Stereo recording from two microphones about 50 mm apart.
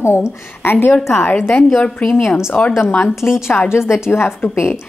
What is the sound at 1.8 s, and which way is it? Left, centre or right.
Speech, left.